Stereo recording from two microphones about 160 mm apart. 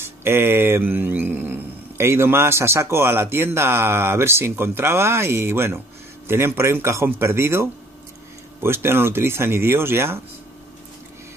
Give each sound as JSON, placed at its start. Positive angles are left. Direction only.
{"t": 0.0, "sound": "speech", "side_deg": -15}
{"t": 8.6, "sound": "speech", "side_deg": -15}